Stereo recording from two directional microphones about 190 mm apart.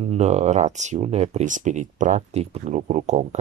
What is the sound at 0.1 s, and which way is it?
Speech, 35° right (ahead or behind).